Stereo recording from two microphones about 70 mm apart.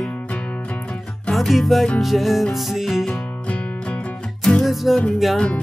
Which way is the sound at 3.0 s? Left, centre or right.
Centre.